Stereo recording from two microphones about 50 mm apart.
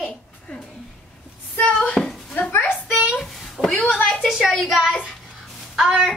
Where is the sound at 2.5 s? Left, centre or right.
Left.